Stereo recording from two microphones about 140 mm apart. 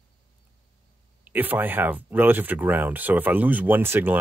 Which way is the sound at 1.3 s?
15° right (ahead or behind).